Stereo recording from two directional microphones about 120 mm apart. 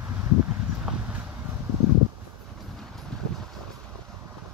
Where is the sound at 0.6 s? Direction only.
10° right (ahead or behind).